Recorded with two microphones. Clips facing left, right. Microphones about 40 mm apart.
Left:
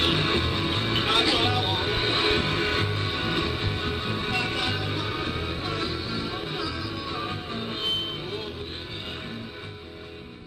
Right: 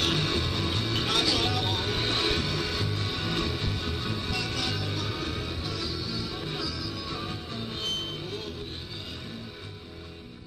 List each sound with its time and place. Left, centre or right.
0.0 s music: left